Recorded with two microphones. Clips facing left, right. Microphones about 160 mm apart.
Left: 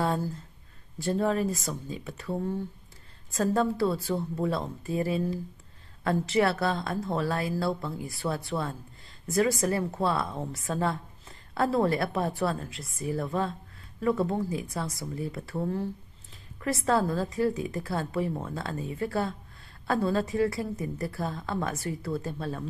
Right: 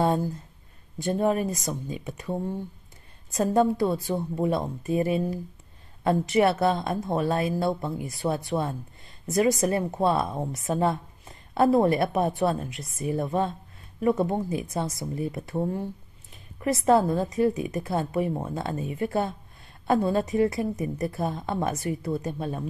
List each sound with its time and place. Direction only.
0.9 s a woman's voice: 20° right (ahead or behind)